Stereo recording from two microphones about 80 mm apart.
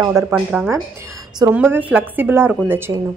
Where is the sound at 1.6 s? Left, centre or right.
Right.